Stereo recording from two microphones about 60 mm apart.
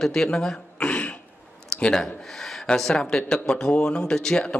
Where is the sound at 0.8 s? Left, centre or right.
Centre.